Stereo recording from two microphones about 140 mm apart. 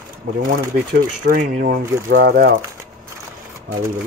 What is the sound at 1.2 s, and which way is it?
Speech, 90° right.